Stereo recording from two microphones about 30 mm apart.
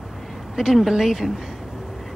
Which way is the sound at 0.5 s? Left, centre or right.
Centre.